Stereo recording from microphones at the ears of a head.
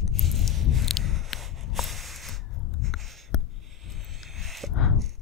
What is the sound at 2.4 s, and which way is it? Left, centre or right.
Music, left.